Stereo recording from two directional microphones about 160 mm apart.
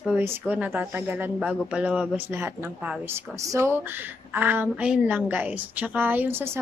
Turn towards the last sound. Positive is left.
turn(degrees=-15)  # may be behind; listen again after turning